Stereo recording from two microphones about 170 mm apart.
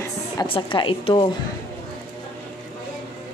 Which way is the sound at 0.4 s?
30° left (ahead or behind).